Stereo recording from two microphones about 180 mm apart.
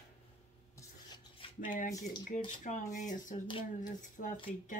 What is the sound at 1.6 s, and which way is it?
Speech, 45° left (ahead or behind).